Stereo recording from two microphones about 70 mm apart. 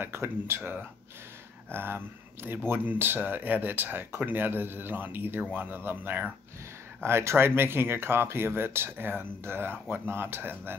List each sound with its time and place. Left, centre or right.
0.0 s speech: right